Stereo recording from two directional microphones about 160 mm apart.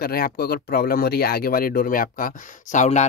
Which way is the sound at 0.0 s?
70° left (ahead or behind).